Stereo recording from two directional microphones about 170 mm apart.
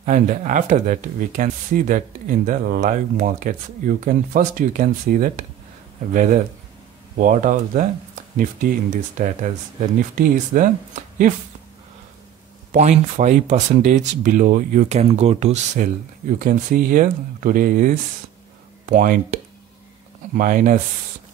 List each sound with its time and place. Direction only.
0.0 s speech: 50° right (ahead or behind)
12.7 s speech: 45° right (ahead or behind)